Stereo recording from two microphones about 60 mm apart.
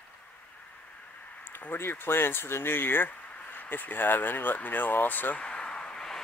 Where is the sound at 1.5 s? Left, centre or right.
Left.